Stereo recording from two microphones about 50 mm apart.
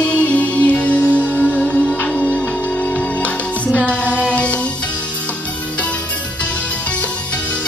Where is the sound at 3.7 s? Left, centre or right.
Left.